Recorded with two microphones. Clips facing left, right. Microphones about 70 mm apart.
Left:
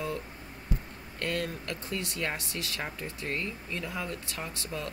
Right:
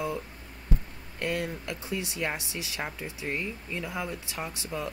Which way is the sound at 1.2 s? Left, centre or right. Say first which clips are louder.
Right 2 dB; centre.